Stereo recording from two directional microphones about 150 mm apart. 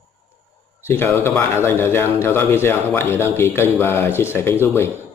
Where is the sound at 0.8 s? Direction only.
15° left (ahead or behind).